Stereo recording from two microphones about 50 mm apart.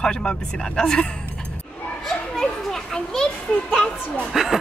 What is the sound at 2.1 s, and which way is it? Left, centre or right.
Children playing, centre.